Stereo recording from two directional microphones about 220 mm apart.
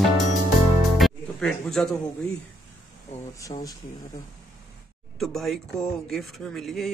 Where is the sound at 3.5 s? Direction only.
30° left (ahead or behind).